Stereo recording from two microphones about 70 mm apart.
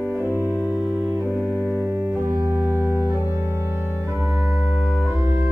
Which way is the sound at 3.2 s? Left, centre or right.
Right.